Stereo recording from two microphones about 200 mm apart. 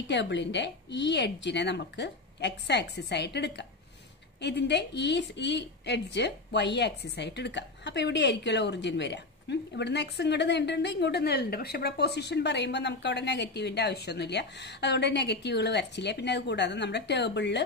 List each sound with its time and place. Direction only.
0.1 s a woman's voice: 60° left (ahead or behind)